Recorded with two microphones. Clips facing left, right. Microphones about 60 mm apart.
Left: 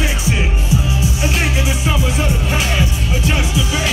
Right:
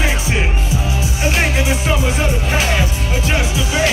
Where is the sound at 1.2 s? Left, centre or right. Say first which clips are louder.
Right 4 dB; right.